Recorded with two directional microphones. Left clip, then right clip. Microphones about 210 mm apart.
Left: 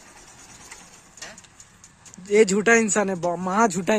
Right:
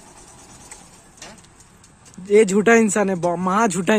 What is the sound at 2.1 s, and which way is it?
Speech, 5° right (ahead or behind).